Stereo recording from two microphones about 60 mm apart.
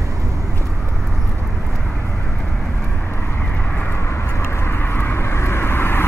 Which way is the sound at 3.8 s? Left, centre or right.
Left.